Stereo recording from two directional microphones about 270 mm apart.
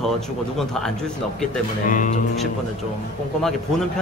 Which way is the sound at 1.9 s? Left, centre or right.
Left.